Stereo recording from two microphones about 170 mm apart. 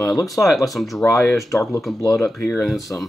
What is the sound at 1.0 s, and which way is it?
Speech, 20° left (ahead or behind).